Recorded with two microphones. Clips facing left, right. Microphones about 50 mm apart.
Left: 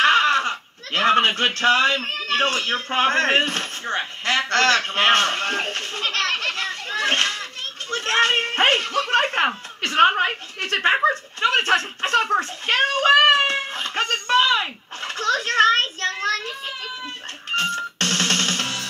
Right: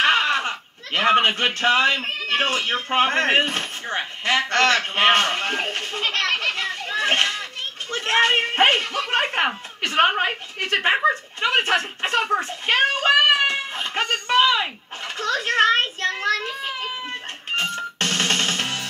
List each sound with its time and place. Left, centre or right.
0.0 s speech: centre
15.2 s a sound: right
17.9 s music: centre